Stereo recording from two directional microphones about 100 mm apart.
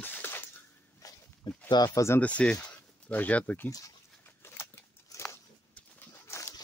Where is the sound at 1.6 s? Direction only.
40° left (ahead or behind).